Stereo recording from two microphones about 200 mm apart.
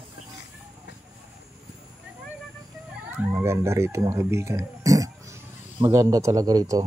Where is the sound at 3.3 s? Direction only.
20° right (ahead or behind).